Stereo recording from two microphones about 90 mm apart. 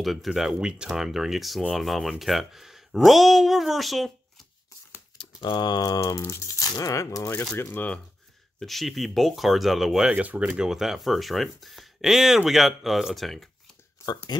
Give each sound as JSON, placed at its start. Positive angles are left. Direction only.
{"t": 0.0, "sound": "speech", "side_deg": 0}
{"t": 5.2, "sound": "speech", "side_deg": 60}
{"t": 7.5, "sound": "speech", "side_deg": 20}
{"t": 8.5, "sound": "speech", "side_deg": 0}
{"t": 10.1, "sound": "speech", "side_deg": -15}
{"t": 10.5, "sound": "speech", "side_deg": -5}